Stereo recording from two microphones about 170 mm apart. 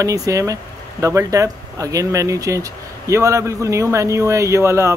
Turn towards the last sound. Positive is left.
turn(degrees=-15)  # may be behind; listen again after turning